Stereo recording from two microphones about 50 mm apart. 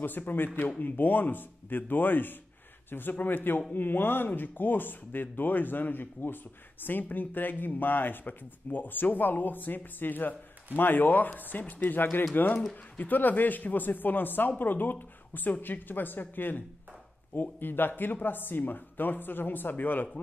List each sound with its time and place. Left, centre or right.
0.0 s speech: left